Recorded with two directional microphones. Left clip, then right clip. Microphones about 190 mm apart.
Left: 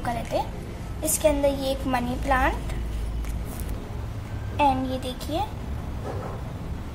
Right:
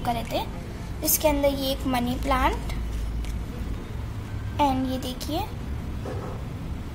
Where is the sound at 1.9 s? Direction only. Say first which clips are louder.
Left 1 dB; 30° right (ahead or behind).